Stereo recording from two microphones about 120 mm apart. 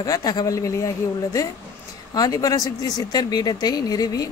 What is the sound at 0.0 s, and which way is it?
A woman's voice, 30° left (ahead or behind).